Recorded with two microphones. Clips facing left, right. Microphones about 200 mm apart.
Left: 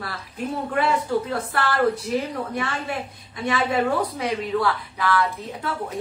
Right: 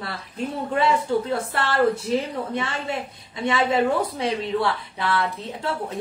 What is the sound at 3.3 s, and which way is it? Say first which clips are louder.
A woman's voice: right 1 dB; 20° right (ahead or behind).